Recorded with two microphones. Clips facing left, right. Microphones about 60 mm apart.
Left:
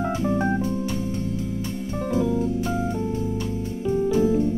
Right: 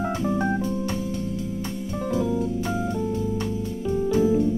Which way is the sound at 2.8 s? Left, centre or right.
Centre.